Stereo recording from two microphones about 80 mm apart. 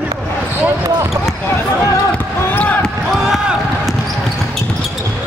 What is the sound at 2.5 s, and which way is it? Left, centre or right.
Basketball bounce, left.